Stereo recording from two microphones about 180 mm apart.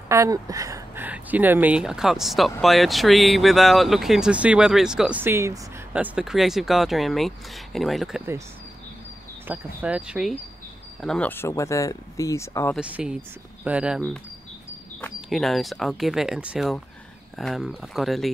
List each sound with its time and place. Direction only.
0.1 s speech: 15° right (ahead or behind); by 8.2 s centre (ahead or behind)
9.5 s speech: 10° right (ahead or behind); by 12.7 s 15° left (ahead or behind)
12.7 s speech: 5° right (ahead or behind)
15.2 s speech: centre (ahead or behind)